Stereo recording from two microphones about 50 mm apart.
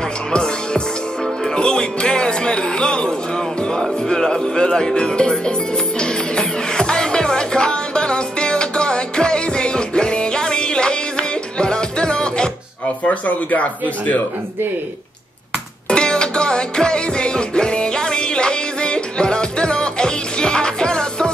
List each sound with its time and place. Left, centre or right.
0.3 s music: centre
3.8 s speech: centre
5.9 s music: centre
13.0 s speech: left
15.9 s music: centre